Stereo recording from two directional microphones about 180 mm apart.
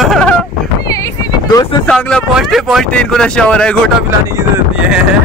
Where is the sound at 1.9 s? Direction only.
5° left (ahead or behind).